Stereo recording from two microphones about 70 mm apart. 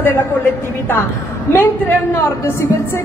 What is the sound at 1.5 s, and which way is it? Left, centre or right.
A man's voice, left.